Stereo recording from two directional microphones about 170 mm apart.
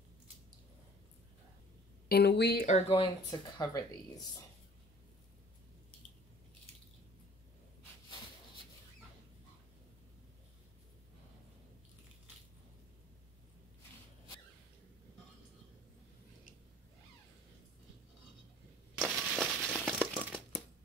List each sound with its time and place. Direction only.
2.0 s speech: 75° left (ahead or behind)
2.6 s speech: 35° left (ahead or behind)
18.9 s a sound: 5° right (ahead or behind)